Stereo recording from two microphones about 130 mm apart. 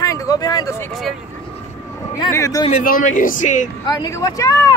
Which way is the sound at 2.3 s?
25° left (ahead or behind).